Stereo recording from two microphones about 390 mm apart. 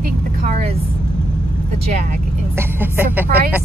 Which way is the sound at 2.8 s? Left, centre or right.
Centre.